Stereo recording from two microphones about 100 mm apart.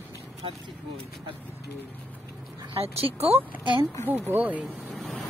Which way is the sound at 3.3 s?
20° right (ahead or behind).